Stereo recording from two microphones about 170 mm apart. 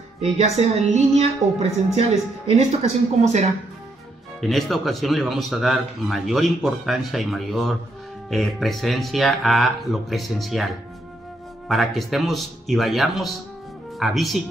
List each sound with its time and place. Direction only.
0.2 s speech: 40° right (ahead or behind)
4.4 s speech: centre (ahead or behind)
11.7 s speech: centre (ahead or behind)